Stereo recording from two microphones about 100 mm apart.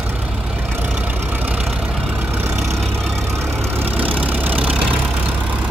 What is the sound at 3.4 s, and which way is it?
Vehicle, 25° right (ahead or behind).